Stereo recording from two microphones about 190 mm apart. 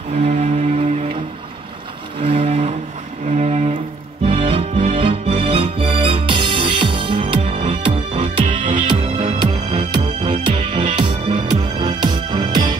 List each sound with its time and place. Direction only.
0.2 s music: 35° right (ahead or behind)
2.1 s music: 30° right (ahead or behind)
4.7 s music: 40° right (ahead or behind)
5.0 s music: 30° right (ahead or behind)